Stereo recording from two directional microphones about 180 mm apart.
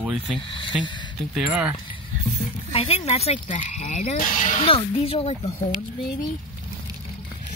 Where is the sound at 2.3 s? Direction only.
35° left (ahead or behind).